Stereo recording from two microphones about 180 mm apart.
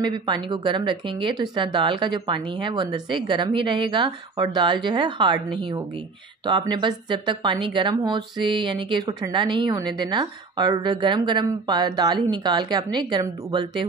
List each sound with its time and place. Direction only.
0.0 s speech: 25° right (ahead or behind)